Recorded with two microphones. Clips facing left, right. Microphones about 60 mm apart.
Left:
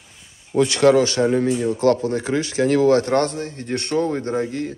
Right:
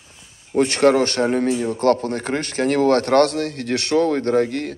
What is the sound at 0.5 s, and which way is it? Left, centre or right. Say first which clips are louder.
Speech: left 1 dB; right.